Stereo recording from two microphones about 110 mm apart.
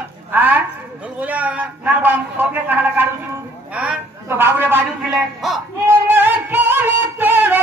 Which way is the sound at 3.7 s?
10° right (ahead or behind).